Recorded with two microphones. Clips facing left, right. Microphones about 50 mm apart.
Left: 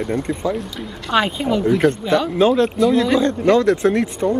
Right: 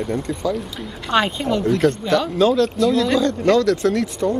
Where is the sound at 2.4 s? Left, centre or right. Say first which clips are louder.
Left 1 dB; left.